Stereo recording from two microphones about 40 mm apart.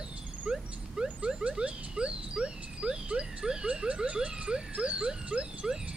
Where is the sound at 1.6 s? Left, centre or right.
Right.